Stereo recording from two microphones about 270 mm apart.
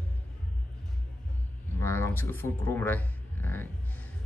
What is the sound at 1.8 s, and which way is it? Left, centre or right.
Speech, centre.